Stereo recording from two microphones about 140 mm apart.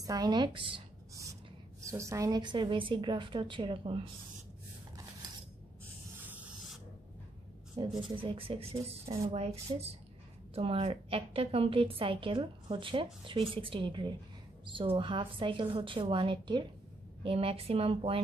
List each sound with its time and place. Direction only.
0.0 s a woman's voice: 25° right (ahead or behind)
1.8 s a woman's voice: 20° right (ahead or behind); by 4.1 s 40° right (ahead or behind)
6.2 s a sound: 10° right (ahead or behind)
7.8 s a woman's voice: 40° right (ahead or behind)